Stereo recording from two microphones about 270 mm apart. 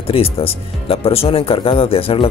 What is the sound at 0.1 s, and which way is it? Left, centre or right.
Speech, left.